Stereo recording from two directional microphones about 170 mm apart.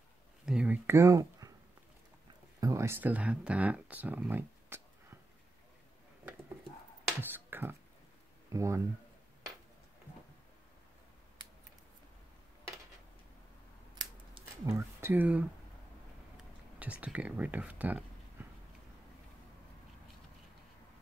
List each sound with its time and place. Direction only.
0.5 s a sound: 5° right (ahead or behind)
2.6 s speech: 15° right (ahead or behind)
7.2 s finger snapping: 10° right (ahead or behind)
8.5 s speech: 20° right (ahead or behind)
13.9 s scissors: 20° right (ahead or behind)
16.7 s speech: 10° right (ahead or behind)